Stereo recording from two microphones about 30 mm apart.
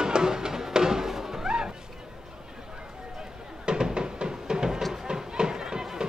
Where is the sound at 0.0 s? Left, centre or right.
Right.